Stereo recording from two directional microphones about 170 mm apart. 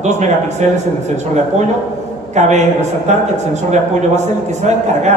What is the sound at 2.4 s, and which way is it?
A man's voice, 45° right (ahead or behind).